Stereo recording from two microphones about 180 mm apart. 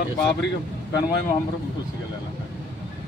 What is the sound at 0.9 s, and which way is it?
Speech, 20° left (ahead or behind).